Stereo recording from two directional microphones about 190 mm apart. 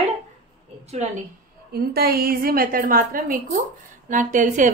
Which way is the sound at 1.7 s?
55° right (ahead or behind).